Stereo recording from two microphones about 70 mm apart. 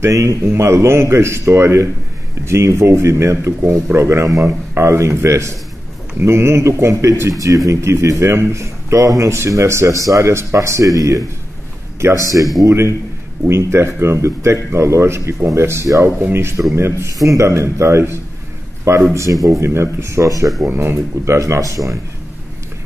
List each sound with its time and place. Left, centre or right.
0.0 s a man's voice: right
12.0 s a man's voice: right
20.6 s speech: right
21.3 s a man's voice: right